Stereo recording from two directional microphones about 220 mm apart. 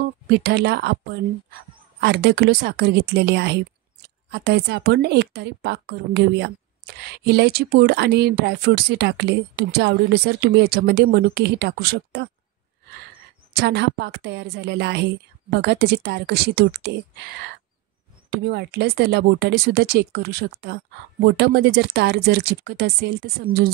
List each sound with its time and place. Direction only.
0.0 s speech: 50° right (ahead or behind)
13.6 s speech: 50° right (ahead or behind)